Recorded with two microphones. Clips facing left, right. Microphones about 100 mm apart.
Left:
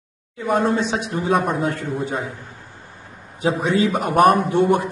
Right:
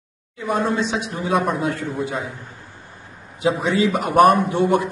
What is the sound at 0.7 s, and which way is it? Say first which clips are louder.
A man's voice: left 1 dB; 50° left (ahead or behind).